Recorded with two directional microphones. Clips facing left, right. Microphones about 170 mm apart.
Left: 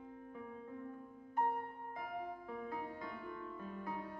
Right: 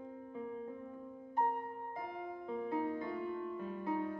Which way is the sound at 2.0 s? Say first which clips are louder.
Left 1 dB; 25° right (ahead or behind).